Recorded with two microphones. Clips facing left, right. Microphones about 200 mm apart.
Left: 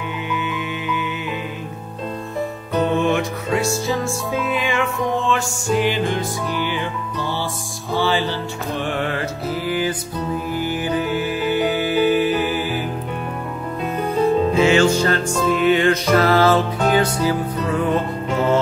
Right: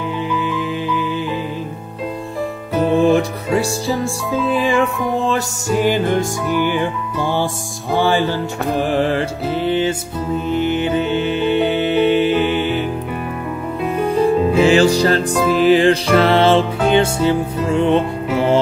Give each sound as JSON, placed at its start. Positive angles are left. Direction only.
{"t": 0.3, "sound": "music", "side_deg": -30}
{"t": 3.0, "sound": "music", "side_deg": -35}
{"t": 3.9, "sound": "music", "side_deg": 0}
{"t": 4.5, "sound": "music", "side_deg": -35}
{"t": 5.3, "sound": "music", "side_deg": -45}
{"t": 8.8, "sound": "music", "side_deg": -35}
{"t": 13.9, "sound": "music", "side_deg": -10}
{"t": 14.6, "sound": "music", "side_deg": -35}